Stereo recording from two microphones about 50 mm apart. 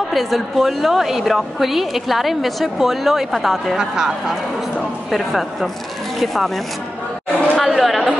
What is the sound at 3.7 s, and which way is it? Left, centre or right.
Speech, centre.